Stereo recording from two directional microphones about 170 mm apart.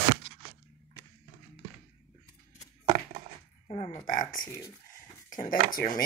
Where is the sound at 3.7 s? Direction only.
35° left (ahead or behind).